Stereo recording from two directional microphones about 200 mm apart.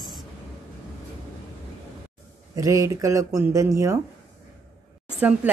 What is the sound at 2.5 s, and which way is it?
A woman's voice, 15° right (ahead or behind).